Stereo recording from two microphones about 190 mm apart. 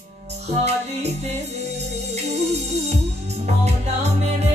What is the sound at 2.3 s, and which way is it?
Music, 35° right (ahead or behind).